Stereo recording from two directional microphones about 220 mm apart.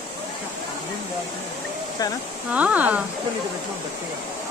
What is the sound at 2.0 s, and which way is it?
Speech, 15° left (ahead or behind).